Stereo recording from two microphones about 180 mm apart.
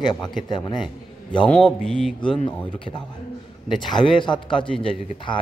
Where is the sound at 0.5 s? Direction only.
25° left (ahead or behind).